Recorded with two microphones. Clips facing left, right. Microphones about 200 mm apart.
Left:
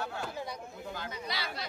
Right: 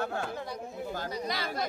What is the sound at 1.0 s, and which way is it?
Speech, 45° right (ahead or behind).